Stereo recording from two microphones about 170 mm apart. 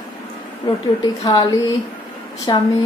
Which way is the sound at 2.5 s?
25° left (ahead or behind).